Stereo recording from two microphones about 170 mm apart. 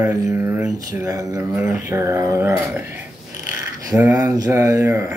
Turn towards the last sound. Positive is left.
turn(degrees=-15)  # may be behind; listen again after turning